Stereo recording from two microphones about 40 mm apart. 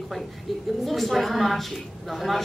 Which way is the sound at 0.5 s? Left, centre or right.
Centre.